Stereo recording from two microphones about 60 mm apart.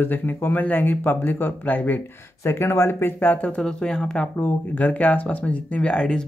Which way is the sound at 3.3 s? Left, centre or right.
Left.